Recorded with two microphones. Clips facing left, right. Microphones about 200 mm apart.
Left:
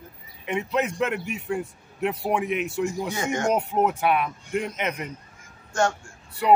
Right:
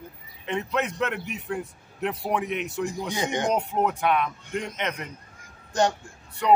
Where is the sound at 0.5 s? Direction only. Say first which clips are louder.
Left 2 dB; 5° left (ahead or behind).